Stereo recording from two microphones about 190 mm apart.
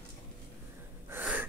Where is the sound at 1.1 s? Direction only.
10° right (ahead or behind).